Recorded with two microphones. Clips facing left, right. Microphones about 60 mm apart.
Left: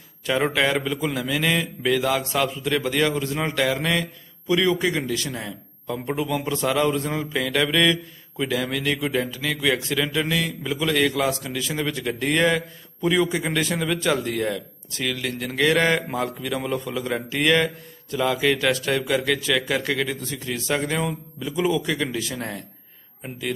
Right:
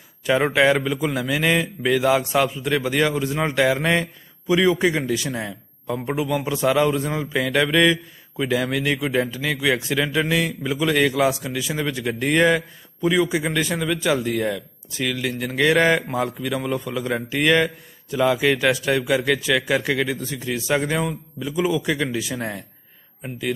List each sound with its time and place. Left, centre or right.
0.3 s a man's voice: centre
3.8 s speech: right
4.5 s a man's voice: centre